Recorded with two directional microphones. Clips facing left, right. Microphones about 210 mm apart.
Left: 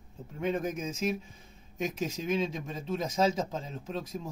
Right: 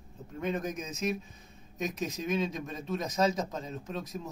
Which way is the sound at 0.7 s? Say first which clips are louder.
Left 2 dB; 30° left (ahead or behind).